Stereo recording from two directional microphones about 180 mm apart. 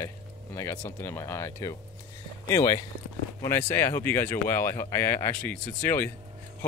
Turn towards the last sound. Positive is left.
turn(degrees=10)  # may be behind; listen again after turning